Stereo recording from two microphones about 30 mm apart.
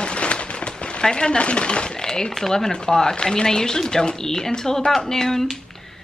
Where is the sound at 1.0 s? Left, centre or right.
Left.